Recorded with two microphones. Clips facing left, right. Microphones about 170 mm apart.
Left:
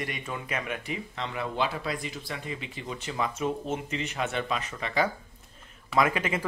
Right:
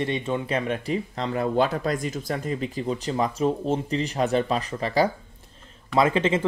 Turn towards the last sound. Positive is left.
turn(degrees=-25)  # may be behind; listen again after turning